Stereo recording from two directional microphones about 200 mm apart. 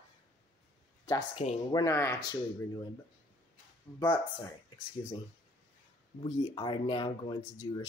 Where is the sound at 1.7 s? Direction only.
20° left (ahead or behind).